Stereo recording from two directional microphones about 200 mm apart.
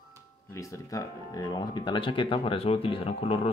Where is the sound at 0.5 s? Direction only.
15° left (ahead or behind).